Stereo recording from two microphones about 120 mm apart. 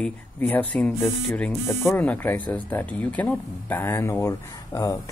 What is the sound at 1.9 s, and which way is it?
Speech, 15° left (ahead or behind).